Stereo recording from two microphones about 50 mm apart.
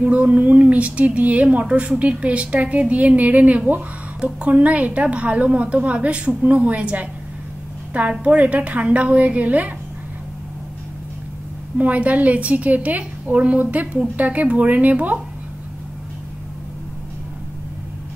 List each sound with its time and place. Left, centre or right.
0.0 s speech: right
11.8 s speech: right